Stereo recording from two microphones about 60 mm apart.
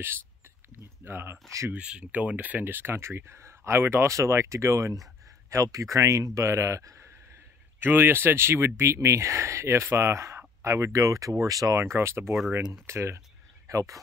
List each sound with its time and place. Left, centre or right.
1.0 s speech: right
1.7 s speech: centre; by 4.1 s right
4.1 s speech: right
7.8 s speech: right
11.7 s speech: right
12.3 s speech: centre
12.8 s speech: right
13.7 s speech: right